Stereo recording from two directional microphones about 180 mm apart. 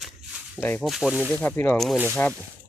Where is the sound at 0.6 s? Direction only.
10° left (ahead or behind).